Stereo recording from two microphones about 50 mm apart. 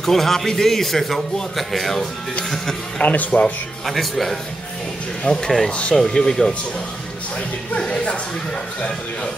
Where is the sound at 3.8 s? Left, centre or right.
Centre.